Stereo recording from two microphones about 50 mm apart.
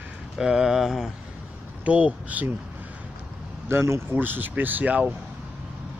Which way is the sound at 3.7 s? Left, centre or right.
Right.